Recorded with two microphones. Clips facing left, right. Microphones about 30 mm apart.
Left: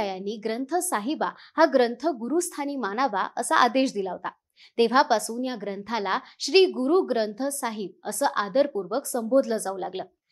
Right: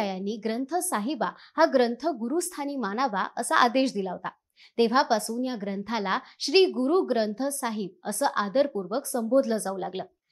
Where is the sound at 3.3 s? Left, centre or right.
Left.